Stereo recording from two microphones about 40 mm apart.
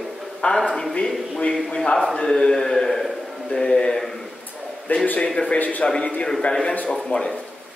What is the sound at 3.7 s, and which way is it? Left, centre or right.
Speech, left.